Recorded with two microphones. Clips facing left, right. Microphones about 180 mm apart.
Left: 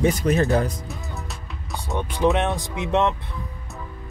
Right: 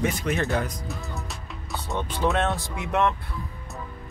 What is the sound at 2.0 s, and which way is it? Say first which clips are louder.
Speech: left 4 dB; 15° left (ahead or behind).